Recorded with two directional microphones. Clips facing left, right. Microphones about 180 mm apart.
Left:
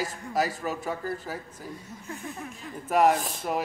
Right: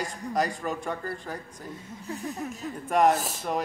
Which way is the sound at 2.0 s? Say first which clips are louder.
Right 5 dB; 35° right (ahead or behind).